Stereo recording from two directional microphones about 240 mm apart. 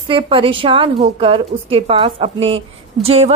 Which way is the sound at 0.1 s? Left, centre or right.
Right.